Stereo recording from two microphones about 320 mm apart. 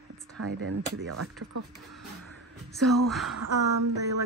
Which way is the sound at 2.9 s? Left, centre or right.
Centre.